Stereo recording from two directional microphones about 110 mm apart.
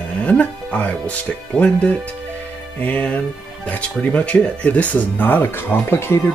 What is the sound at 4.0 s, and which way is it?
Speech, 15° left (ahead or behind).